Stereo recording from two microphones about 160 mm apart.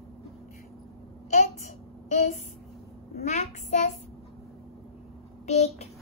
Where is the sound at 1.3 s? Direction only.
50° left (ahead or behind).